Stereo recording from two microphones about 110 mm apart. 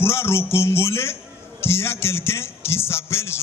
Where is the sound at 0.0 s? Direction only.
25° left (ahead or behind).